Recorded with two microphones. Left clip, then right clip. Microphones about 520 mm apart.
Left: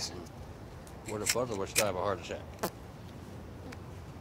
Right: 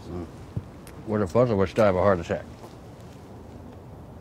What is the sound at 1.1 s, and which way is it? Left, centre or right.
Speech, right.